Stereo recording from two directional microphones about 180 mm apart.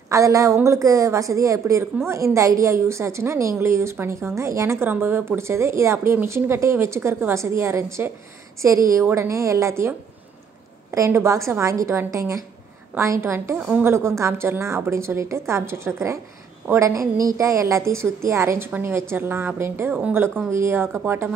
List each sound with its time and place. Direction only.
0.1 s a woman's voice: 20° right (ahead or behind)